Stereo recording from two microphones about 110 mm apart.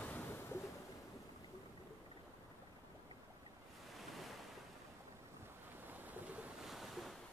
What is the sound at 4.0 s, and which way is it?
Waves, centre (ahead or behind).